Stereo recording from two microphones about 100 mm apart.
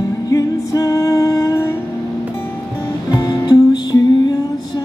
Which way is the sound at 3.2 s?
40° left (ahead or behind).